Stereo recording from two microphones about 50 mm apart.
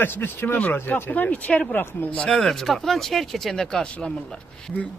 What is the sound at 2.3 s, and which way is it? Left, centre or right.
Speech, centre.